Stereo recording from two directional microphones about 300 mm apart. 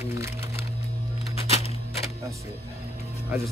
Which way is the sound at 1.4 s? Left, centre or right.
Centre.